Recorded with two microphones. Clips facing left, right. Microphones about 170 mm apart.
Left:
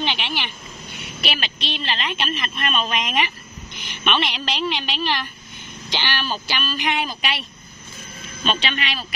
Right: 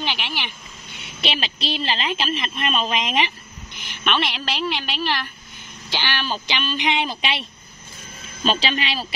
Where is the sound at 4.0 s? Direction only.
Centre (ahead or behind); by 7.4 s 25° right (ahead or behind).